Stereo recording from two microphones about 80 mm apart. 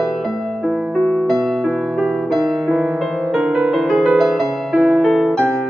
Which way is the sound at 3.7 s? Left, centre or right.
Centre.